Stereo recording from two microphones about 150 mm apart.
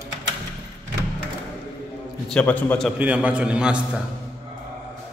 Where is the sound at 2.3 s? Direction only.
10° left (ahead or behind).